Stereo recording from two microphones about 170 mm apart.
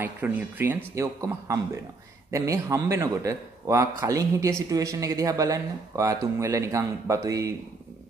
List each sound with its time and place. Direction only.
0.0 s a man's voice: 10° right (ahead or behind)